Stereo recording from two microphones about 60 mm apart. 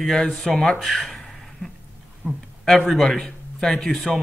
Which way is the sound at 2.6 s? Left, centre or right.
Centre.